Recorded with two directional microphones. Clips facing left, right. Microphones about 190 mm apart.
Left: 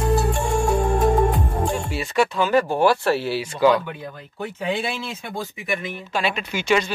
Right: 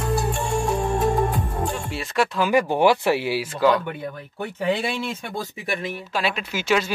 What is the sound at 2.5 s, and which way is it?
Speech, 15° right (ahead or behind).